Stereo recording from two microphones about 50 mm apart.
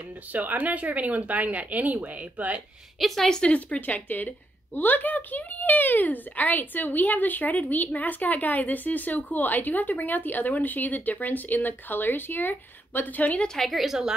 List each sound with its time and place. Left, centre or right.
0.3 s speech: right
3.0 s speech: centre
3.4 s a woman's voice: left
13.6 s a woman's voice: centre